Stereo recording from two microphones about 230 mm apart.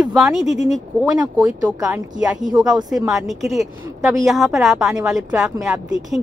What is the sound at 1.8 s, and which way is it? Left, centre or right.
Speech, centre.